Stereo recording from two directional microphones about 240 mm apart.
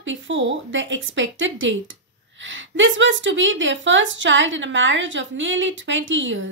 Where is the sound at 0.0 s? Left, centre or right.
Right.